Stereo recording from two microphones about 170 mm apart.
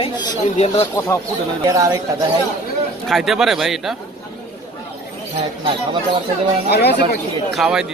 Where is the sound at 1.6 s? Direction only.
20° right (ahead or behind).